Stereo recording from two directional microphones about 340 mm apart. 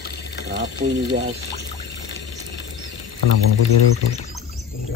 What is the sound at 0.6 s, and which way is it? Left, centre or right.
Speech, right.